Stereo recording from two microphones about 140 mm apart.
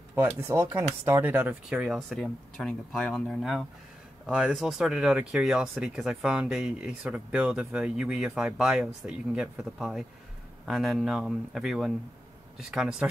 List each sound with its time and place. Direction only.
0.1 s speech: 15° right (ahead or behind)